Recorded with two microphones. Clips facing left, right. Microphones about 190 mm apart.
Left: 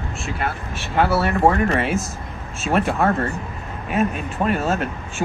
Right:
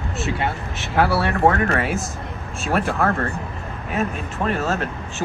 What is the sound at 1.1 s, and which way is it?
Speech, centre (ahead or behind).